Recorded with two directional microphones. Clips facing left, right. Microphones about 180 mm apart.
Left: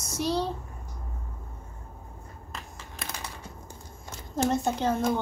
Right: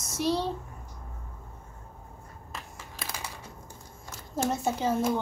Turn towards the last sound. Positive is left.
turn(degrees=-5)  # may be behind; listen again after turning